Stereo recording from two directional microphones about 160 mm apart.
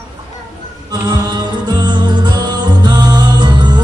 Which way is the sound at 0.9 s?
25° right (ahead or behind).